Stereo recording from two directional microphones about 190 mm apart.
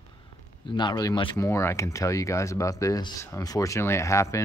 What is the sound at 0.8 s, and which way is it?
Speech, 20° left (ahead or behind).